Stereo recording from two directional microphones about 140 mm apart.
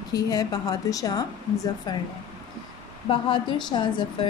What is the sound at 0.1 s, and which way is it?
Speech, 25° left (ahead or behind).